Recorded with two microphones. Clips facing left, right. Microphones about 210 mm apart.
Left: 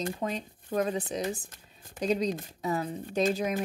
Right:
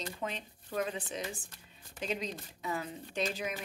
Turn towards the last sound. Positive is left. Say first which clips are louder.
# left 8 dB
turn(degrees=45)  # may be behind; listen again after turning